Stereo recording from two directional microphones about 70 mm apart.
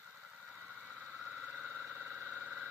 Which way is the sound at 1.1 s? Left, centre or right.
Centre.